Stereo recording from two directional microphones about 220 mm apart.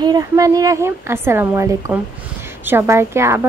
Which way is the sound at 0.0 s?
15° right (ahead or behind).